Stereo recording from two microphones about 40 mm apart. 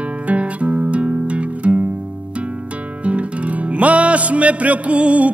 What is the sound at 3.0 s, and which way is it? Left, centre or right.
Music, right.